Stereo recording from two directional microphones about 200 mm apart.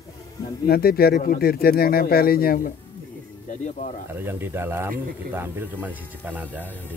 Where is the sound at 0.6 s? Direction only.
50° left (ahead or behind).